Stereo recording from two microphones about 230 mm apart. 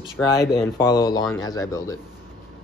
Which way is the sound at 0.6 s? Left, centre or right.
Centre.